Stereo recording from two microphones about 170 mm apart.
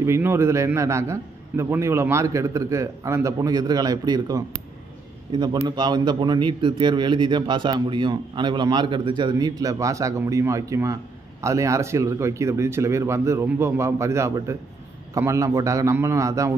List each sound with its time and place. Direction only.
0.0 s a man's voice: 15° right (ahead or behind)